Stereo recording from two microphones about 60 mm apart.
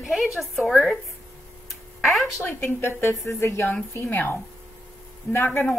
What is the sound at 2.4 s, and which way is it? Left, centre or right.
A woman's voice, left.